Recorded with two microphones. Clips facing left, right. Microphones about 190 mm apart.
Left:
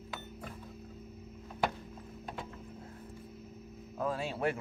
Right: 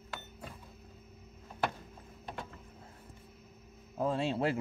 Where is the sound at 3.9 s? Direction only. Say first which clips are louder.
Right 3 dB; 25° right (ahead or behind).